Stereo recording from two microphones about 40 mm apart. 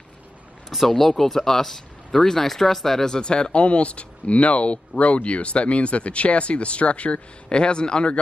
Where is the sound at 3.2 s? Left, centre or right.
Left.